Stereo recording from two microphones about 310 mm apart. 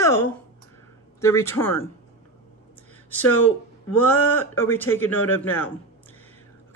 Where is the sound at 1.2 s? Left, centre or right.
Centre.